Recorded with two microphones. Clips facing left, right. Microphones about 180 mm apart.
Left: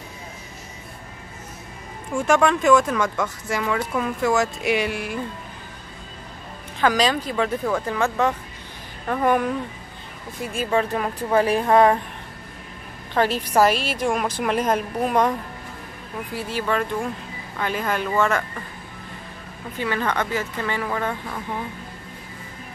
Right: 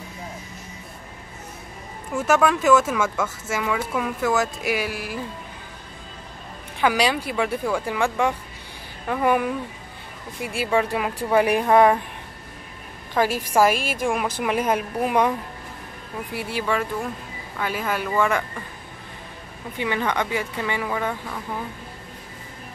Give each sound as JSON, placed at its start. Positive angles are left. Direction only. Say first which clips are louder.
{"t": 2.1, "sound": "speech", "louder": "left 1 dB", "side_deg": -5}
{"t": 6.8, "sound": "speech", "louder": "left 1 dB", "side_deg": -10}
{"t": 13.1, "sound": "a woman's voice", "louder": "left 1 dB", "side_deg": -10}
{"t": 16.3, "sound": "speech", "louder": "left 1 dB", "side_deg": -15}
{"t": 19.8, "sound": "speech", "louder": "even", "side_deg": -15}